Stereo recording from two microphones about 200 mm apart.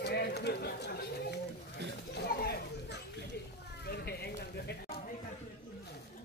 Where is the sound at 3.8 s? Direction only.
55° left (ahead or behind).